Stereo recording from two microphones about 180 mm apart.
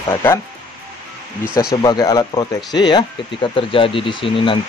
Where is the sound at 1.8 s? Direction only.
20° left (ahead or behind).